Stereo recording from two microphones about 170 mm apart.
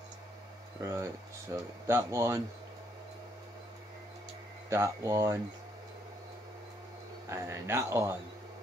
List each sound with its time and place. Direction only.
0.7 s speech: 15° right (ahead or behind)
4.6 s speech: 15° right (ahead or behind)
7.2 s speech: 15° right (ahead or behind)